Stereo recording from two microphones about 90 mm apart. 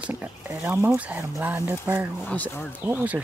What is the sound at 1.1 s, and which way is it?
Speech, 30° right (ahead or behind).